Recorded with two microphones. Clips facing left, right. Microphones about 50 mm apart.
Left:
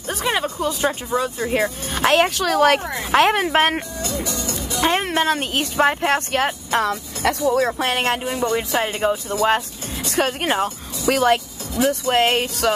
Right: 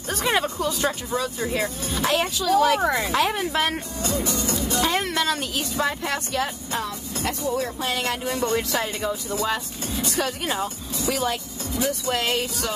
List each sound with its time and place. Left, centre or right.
0.1 s speech: centre
0.6 s a woman's voice: left
3.4 s speech: left
4.0 s speech: right
4.7 s speech: left
8.3 s speech: left
8.8 s speech: left
11.1 s a woman's voice: left
11.7 s speech: left